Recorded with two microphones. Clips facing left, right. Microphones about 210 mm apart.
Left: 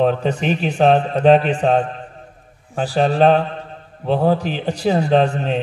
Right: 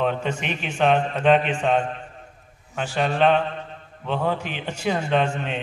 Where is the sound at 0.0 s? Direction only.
35° left (ahead or behind).